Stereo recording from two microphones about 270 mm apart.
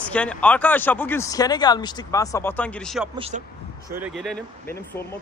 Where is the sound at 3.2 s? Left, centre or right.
Right.